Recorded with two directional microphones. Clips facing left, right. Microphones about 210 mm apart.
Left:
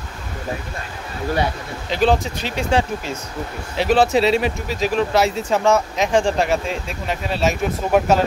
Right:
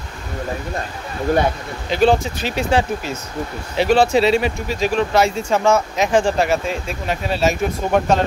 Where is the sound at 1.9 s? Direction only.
Centre (ahead or behind).